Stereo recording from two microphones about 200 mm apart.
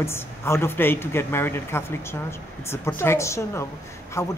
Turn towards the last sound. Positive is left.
turn(degrees=15)  # may be behind; listen again after turning